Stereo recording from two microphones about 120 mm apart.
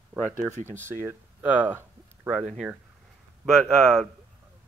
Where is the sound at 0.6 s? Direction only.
20° right (ahead or behind).